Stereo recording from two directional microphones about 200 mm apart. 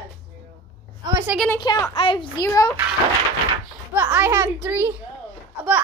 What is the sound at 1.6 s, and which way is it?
A woman's voice, 20° left (ahead or behind).